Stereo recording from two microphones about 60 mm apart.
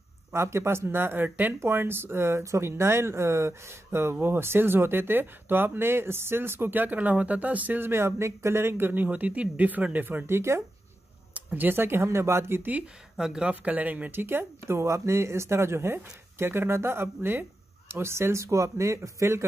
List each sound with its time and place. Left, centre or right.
0.3 s speech: right
7.9 s speech: right
10.2 s speech: right
11.3 s speech: right
13.2 s speech: centre
13.5 s speech: right
14.2 s speech: right